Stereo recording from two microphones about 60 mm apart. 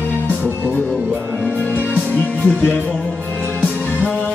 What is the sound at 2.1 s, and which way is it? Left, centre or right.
Music, left.